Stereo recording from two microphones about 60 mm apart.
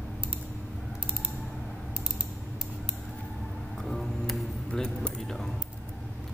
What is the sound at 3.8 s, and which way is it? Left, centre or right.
Music, centre.